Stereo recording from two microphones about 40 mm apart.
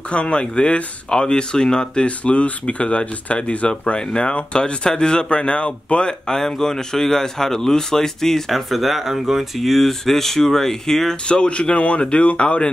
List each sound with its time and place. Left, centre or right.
0.1 s speech: left
2.0 s speech: left
6.2 s a man's voice: centre
11.2 s speech: left